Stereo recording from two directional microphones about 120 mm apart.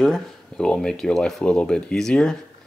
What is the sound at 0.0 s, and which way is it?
Speech, 5° left (ahead or behind).